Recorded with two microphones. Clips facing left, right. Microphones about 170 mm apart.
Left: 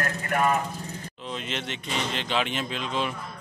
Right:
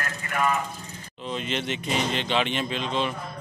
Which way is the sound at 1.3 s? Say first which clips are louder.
Right 4 dB; centre (ahead or behind).